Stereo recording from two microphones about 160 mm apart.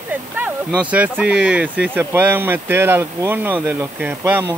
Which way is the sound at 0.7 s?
10° right (ahead or behind).